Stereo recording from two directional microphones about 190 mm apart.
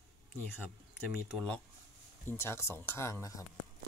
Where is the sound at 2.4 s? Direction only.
15° left (ahead or behind).